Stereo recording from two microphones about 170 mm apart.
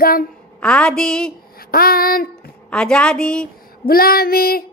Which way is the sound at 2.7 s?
5° left (ahead or behind).